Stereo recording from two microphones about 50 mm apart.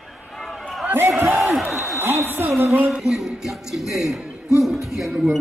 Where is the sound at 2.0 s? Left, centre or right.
Right.